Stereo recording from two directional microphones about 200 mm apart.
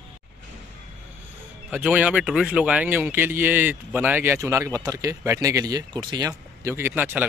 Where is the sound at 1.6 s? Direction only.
5° right (ahead or behind); by 6.3 s 20° right (ahead or behind).